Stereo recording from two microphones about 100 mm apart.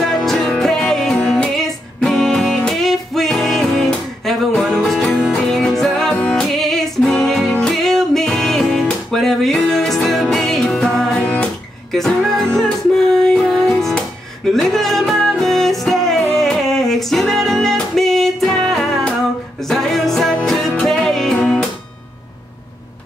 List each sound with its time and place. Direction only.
0.0 s music: 5° left (ahead or behind)